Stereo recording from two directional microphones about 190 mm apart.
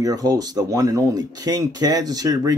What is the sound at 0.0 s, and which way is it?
Speech, 20° right (ahead or behind).